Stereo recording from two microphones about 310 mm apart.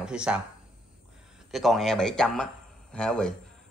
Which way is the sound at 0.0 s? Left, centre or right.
Centre.